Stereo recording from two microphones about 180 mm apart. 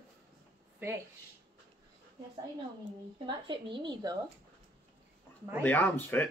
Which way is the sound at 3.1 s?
25° right (ahead or behind).